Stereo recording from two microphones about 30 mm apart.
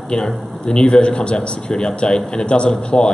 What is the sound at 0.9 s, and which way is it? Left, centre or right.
Speech, left.